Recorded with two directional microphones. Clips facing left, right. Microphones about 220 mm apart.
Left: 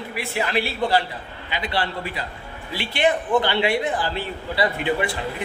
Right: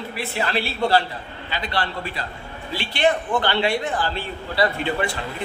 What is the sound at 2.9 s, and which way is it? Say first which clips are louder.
A man's voice: left 1 dB; 15° left (ahead or behind).